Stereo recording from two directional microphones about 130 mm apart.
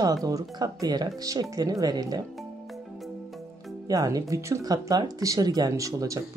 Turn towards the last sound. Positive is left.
turn(degrees=-25)  # may be behind; listen again after turning